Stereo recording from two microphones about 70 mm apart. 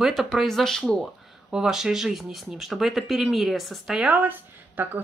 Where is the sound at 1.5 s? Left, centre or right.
Centre.